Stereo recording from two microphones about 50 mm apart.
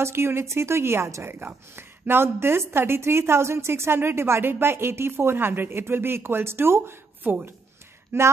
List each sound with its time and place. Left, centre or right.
0.0 s a woman's voice: right
1.3 s a woman's voice: right
8.1 s a woman's voice: right